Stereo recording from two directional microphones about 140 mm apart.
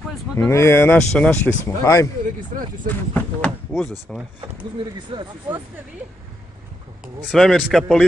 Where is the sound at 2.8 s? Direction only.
10° left (ahead or behind).